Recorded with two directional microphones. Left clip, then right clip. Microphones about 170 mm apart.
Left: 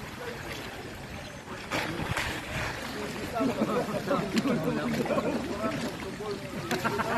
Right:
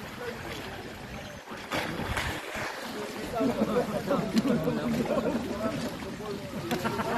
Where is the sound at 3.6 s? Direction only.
55° right (ahead or behind).